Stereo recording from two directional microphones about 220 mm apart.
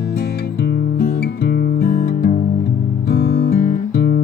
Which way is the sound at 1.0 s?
45° left (ahead or behind).